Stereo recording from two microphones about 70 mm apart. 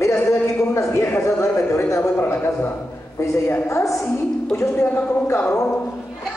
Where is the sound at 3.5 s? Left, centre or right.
Left.